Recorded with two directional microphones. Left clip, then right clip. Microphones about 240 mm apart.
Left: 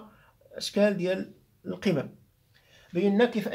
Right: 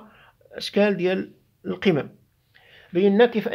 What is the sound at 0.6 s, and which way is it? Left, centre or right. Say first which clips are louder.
Speech: right 4 dB; right.